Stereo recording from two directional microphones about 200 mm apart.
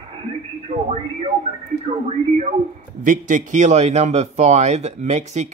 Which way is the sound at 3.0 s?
40° right (ahead or behind).